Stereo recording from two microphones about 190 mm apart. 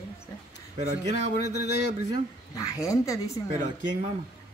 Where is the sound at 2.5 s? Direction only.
15° left (ahead or behind).